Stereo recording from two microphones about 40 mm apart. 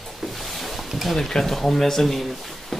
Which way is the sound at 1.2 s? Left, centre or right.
Centre.